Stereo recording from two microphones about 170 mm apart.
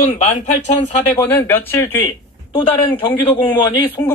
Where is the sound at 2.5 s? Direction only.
30° left (ahead or behind).